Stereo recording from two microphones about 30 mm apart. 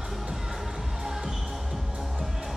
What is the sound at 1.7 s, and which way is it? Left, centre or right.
Music, right.